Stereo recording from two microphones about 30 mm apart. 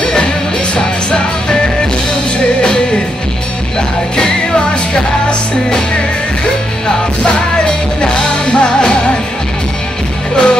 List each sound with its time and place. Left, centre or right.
0.0 s music: left
7.6 s music: left
10.3 s music: left